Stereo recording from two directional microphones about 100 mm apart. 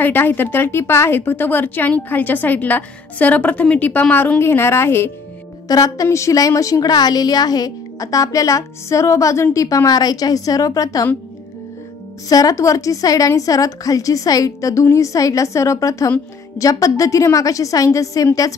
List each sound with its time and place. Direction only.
0.0 s a woman's voice: 20° left (ahead or behind)
5.7 s a woman's voice: 35° left (ahead or behind)
12.3 s a woman's voice: 35° left (ahead or behind)